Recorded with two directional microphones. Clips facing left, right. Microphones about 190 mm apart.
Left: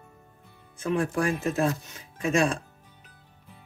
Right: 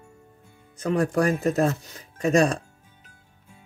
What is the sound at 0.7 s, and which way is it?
Speech, 40° right (ahead or behind).